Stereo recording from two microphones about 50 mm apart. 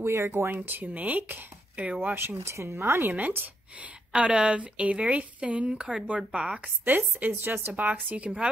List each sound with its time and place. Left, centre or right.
0.0 s speech: right
0.7 s a woman's voice: right
2.4 s speech: right
3.0 s a woman's voice: right
4.1 s speech: right
6.8 s a woman's voice: right